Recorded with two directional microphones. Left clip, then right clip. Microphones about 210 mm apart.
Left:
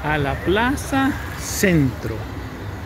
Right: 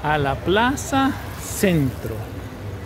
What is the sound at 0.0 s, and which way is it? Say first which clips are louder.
Speech: right 1 dB; 10° right (ahead or behind).